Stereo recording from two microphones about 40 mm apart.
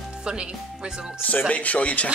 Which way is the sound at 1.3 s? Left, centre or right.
Left.